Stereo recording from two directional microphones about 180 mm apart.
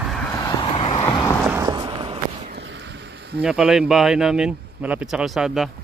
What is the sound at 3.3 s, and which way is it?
Speech, 5° right (ahead or behind).